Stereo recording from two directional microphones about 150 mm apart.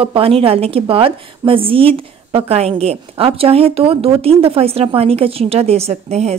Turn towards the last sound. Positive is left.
turn(degrees=-45)  # may be behind; listen again after turning